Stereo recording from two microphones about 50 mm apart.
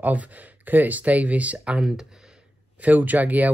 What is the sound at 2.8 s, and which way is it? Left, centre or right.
Speech, right.